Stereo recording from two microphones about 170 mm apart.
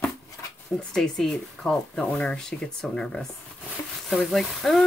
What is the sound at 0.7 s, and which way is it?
Speech, 5° left (ahead or behind).